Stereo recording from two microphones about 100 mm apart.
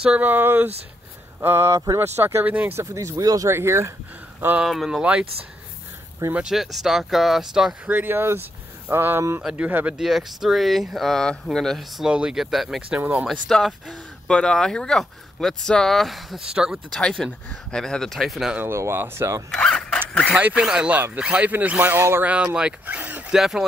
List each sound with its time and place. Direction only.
0.0 s speech: 15° right (ahead or behind)
2.8 s speech: 30° right (ahead or behind)
4.6 s speech: centre (ahead or behind)
6.3 s speech: 5° right (ahead or behind); by 9.2 s 20° right (ahead or behind)
9.4 s speech: 5° right (ahead or behind)
9.7 s speech: 20° right (ahead or behind)
9.9 s speech: 5° right (ahead or behind)
12.1 s speech: 10° right (ahead or behind)
13.0 s speech: 15° right (ahead or behind)
13.3 s speech: centre (ahead or behind)
17.0 s speech: 5° left (ahead or behind)
18.6 s speech: 25° right (ahead or behind)
19.5 s zipper: 5° left (ahead or behind)
20.3 s speech: 15° right (ahead or behind)